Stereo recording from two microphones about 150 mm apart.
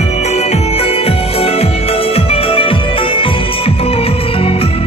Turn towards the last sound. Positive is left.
turn(degrees=40)  # may be behind; listen again after turning